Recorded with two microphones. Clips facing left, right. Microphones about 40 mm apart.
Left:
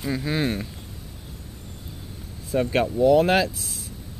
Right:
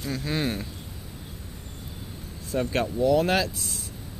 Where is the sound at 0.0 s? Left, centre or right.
Centre.